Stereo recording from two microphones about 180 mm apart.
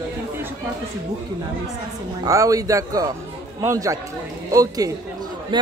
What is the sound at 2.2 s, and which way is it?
A man's voice, 20° right (ahead or behind).